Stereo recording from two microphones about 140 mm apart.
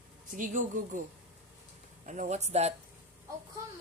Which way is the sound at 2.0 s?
60° right (ahead or behind).